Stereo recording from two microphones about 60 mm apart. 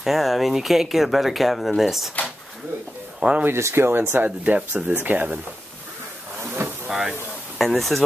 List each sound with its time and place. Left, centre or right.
0.0 s speech: centre
3.2 s speech: centre
3.4 s speech: right
6.9 s a sound: centre
7.5 s speech: centre